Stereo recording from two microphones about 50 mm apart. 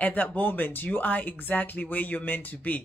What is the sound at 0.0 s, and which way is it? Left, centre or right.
Speech, left.